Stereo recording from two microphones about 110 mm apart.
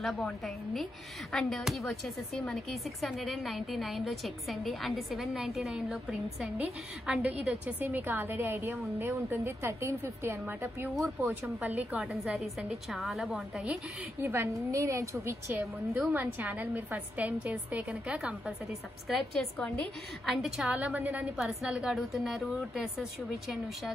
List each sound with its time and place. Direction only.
0.0 s speech: centre (ahead or behind)
1.3 s a woman's voice: centre (ahead or behind)
14.2 s a woman's voice: 25° right (ahead or behind)
16.1 s a woman's voice: 15° right (ahead or behind)